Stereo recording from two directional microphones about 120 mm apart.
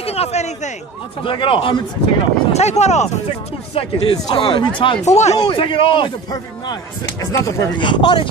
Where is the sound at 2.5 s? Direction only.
65° left (ahead or behind).